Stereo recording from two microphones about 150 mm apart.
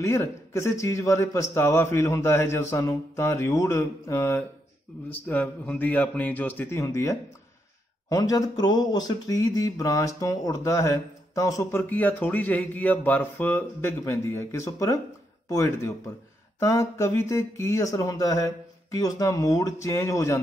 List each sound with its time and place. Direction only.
0.0 s a man's voice: 15° left (ahead or behind)